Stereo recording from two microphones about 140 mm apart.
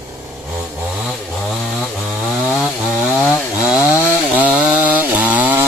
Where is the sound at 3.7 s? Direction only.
10° right (ahead or behind).